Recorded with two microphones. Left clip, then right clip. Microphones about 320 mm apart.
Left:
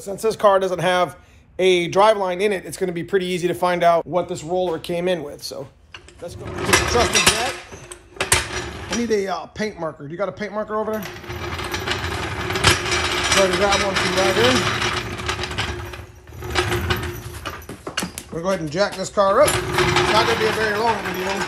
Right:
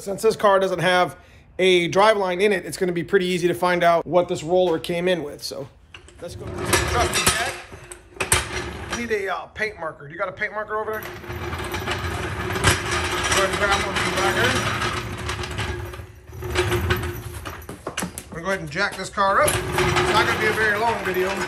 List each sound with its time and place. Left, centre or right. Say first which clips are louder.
0.0 s speech: left 1 dB; centre
7.1 s a sound: left 4 dB; centre
8.2 s mechanisms: left 2 dB; centre
9.1 s speech: left 2 dB; centre
11.0 s train: left 1 dB; centre
16.4 s a sound: left 1 dB; centre
18.3 s speech: left 3 dB; centre